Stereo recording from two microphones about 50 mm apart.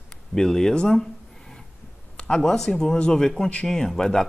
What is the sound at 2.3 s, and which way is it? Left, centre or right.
Speech, centre.